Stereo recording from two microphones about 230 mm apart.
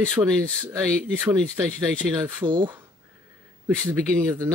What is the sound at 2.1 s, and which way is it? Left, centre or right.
Speech, centre.